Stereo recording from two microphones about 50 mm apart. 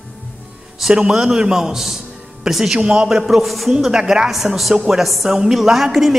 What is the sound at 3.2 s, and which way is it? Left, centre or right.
A woman's voice, centre.